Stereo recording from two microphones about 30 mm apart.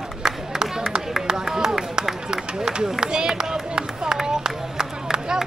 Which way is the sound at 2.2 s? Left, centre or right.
Right.